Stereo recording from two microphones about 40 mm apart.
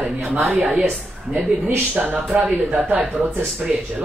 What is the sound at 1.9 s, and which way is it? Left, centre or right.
Speech, right.